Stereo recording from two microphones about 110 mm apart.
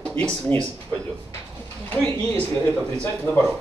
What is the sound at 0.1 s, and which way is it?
Speech, 20° left (ahead or behind).